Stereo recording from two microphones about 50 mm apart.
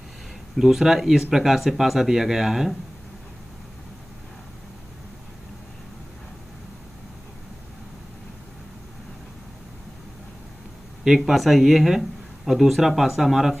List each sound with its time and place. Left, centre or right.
0.6 s speech: centre
11.1 s speech: centre